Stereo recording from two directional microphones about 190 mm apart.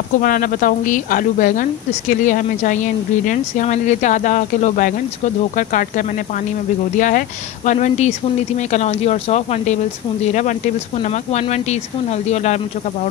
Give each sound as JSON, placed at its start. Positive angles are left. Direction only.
{"t": 0.2, "sound": "speech", "side_deg": 45}